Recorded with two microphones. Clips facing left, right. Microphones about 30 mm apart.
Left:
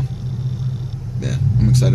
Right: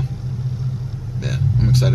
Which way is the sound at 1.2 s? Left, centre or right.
Centre.